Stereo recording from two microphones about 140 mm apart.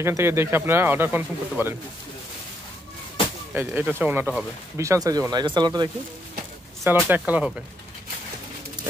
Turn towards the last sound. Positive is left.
turn(degrees=-10)  # may be behind; listen again after turning